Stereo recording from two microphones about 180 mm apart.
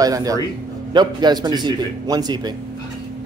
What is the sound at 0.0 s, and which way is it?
A man's voice, 20° right (ahead or behind).